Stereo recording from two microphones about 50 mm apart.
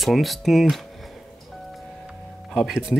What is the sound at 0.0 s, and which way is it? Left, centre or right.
Speech, centre.